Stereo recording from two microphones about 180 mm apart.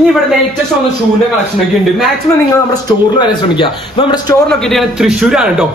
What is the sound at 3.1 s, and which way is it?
A man's voice, 25° left (ahead or behind).